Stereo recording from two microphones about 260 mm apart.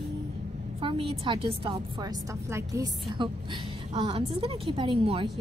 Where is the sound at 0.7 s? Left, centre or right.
Centre.